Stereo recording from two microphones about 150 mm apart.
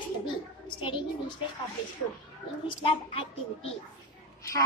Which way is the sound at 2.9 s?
40° left (ahead or behind).